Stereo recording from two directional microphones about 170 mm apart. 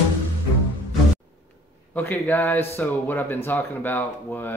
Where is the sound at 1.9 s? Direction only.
10° left (ahead or behind).